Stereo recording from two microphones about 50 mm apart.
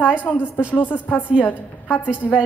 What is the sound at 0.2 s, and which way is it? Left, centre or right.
A woman's voice, left.